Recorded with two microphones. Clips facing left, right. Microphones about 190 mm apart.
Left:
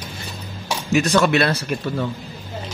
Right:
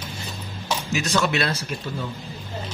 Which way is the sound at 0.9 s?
55° left (ahead or behind).